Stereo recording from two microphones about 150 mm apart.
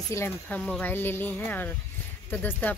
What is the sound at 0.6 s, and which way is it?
Speech, 10° left (ahead or behind).